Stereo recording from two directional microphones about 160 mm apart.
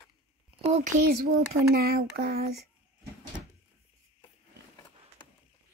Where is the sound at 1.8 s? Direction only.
75° right (ahead or behind).